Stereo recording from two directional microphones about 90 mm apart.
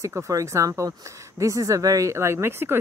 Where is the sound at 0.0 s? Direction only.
35° right (ahead or behind).